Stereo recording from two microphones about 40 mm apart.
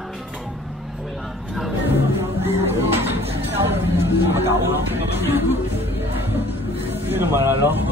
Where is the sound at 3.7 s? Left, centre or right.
Right.